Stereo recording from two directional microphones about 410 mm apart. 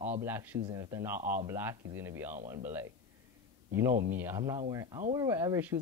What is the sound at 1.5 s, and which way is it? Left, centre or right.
Speech, centre.